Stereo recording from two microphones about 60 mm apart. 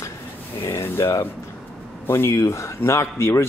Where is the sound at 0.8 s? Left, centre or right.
Left.